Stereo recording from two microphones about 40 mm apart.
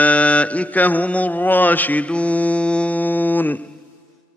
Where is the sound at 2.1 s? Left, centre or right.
Left.